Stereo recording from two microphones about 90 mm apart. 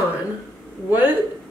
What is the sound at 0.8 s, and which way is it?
Speech, 20° right (ahead or behind).